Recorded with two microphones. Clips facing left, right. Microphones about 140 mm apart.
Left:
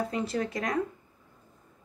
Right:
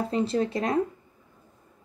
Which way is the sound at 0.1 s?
30° right (ahead or behind).